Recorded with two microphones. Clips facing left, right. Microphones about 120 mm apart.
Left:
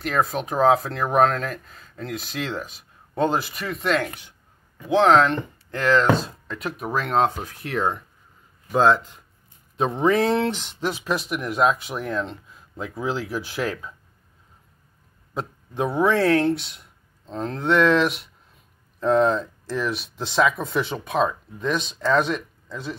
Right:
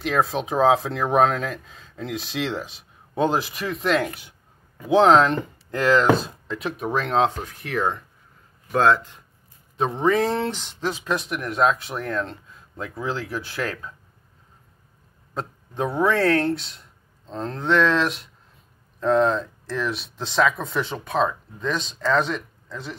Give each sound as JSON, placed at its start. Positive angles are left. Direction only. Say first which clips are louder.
{"t": 0.1, "sound": "speech", "louder": "right 1 dB", "side_deg": 0}
{"t": 1.7, "sound": "a sound", "louder": "right 1 dB", "side_deg": 0}
{"t": 2.1, "sound": "speech", "louder": "right 2 dB", "side_deg": 0}
{"t": 4.9, "sound": "speech", "louder": "right 1 dB", "side_deg": -15}
{"t": 6.4, "sound": "speech", "louder": "right 2 dB", "side_deg": 0}
{"t": 8.7, "sound": "speech", "louder": "left 1 dB", "side_deg": 15}
{"t": 15.3, "sound": "a man's voice", "louder": "left 1 dB", "side_deg": 5}